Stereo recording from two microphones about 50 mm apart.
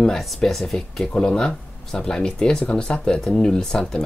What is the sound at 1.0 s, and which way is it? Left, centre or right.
Speech, centre.